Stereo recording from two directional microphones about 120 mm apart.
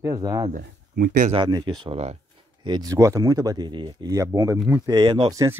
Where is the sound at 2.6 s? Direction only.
40° right (ahead or behind).